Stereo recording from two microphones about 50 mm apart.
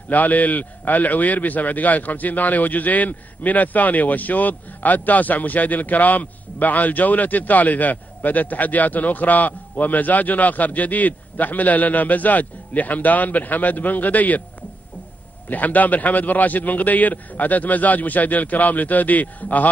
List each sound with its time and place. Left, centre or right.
0.1 s a man's voice: left
15.4 s a man's voice: left